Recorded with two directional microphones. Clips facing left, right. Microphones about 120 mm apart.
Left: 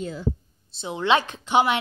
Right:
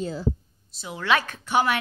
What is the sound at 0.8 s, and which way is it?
Speech, 25° left (ahead or behind).